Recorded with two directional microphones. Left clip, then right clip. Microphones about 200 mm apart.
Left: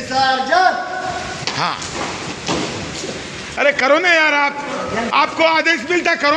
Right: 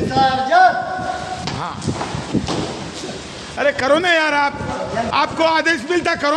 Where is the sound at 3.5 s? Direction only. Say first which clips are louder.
Left 2 dB; 10° right (ahead or behind).